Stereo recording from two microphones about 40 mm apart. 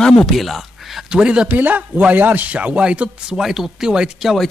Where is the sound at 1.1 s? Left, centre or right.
Right.